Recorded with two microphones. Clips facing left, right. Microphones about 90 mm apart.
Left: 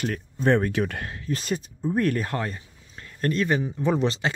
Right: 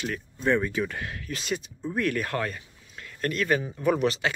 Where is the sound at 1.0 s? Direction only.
25° left (ahead or behind).